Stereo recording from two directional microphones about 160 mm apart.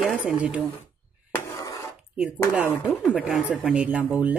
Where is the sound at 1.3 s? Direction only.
20° left (ahead or behind).